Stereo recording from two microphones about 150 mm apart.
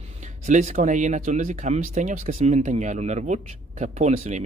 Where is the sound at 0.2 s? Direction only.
50° right (ahead or behind).